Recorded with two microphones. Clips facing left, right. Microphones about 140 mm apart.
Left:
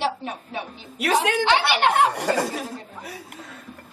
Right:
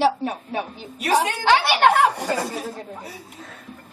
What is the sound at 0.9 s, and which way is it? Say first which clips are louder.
Speech: even; 90° left.